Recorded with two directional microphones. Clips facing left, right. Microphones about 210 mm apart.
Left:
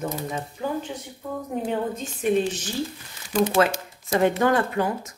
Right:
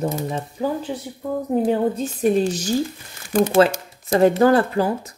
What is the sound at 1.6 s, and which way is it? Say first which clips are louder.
Speech: right 7 dB; 35° right (ahead or behind).